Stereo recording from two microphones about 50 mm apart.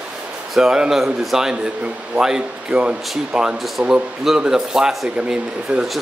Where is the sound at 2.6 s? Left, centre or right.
Right.